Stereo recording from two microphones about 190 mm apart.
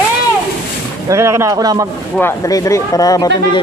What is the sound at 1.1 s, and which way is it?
Speech, 15° right (ahead or behind).